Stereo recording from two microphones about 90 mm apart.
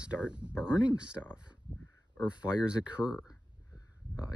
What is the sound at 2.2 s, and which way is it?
Speech, 15° right (ahead or behind).